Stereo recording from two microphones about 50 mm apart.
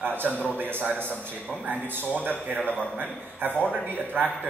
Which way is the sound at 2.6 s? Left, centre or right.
Left.